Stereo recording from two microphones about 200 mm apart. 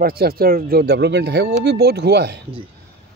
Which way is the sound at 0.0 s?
50° right (ahead or behind).